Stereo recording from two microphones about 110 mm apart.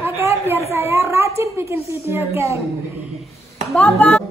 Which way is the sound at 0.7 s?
25° right (ahead or behind).